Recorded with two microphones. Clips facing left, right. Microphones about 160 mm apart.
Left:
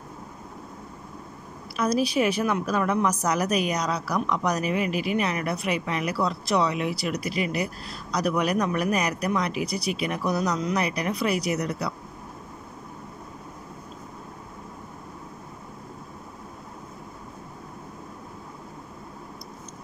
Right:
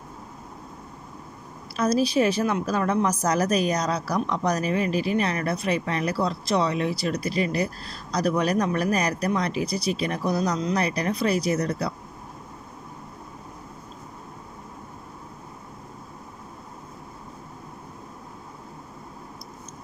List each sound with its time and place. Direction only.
1.8 s speech: 40° right (ahead or behind)